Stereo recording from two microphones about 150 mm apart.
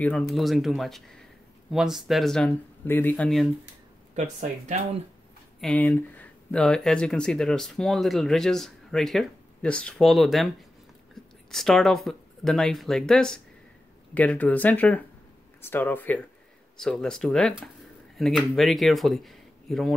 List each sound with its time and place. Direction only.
0.0 s speech: 5° left (ahead or behind)
4.1 s speech: 50° right (ahead or behind)
5.6 s speech: 10° left (ahead or behind)
11.5 s speech: centre (ahead or behind)